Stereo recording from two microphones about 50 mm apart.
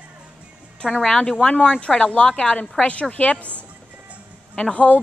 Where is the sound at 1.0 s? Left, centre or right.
Centre.